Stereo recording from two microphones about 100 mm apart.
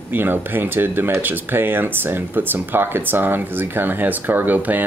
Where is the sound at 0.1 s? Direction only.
20° right (ahead or behind).